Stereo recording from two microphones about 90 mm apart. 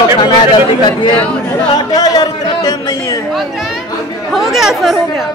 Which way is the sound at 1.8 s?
45° left (ahead or behind).